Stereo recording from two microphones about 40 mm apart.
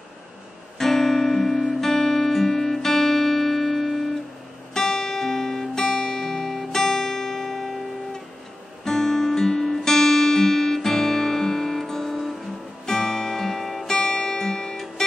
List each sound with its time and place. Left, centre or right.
0.7 s music: centre
4.7 s guitar: centre
12.8 s music: centre
13.9 s music: centre